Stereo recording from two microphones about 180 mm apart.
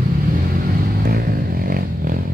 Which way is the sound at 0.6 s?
55° right (ahead or behind).